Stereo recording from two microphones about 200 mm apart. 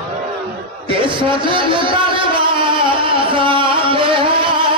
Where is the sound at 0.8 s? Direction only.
25° right (ahead or behind).